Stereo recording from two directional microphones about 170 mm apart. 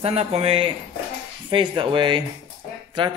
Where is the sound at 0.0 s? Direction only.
40° right (ahead or behind).